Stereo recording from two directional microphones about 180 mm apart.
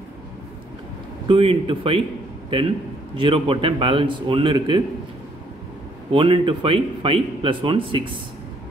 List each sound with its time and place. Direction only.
1.2 s speech: 30° right (ahead or behind)
3.2 s speech: 30° right (ahead or behind)
6.1 s speech: 30° right (ahead or behind)